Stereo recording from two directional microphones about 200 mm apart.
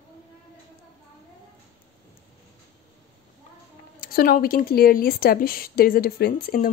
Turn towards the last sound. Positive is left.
turn(degrees=45)  # may be behind; listen again after turning